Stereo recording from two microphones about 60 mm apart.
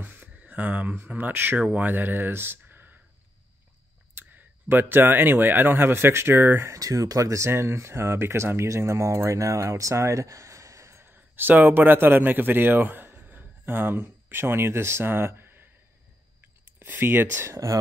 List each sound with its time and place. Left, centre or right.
0.0 s a sound: right
0.4 s speech: right
4.1 s speech: right
6.7 s speech: right
11.1 s speech: right
16.8 s speech: right